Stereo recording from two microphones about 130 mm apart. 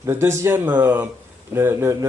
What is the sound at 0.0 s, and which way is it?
Speech, 20° right (ahead or behind).